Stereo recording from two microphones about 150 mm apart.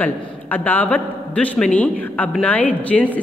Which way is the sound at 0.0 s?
10° left (ahead or behind).